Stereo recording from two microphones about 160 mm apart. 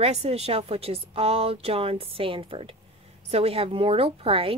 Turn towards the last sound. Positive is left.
turn(degrees=-35)  # may be behind; listen again after turning